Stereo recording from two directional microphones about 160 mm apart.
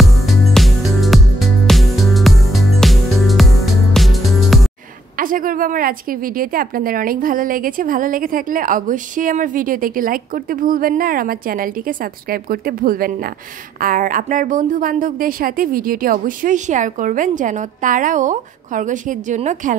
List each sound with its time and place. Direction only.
0.0 s music: centre (ahead or behind)
5.1 s a woman's voice: 60° right (ahead or behind)